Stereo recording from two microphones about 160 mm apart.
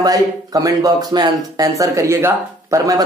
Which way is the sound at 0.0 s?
20° right (ahead or behind).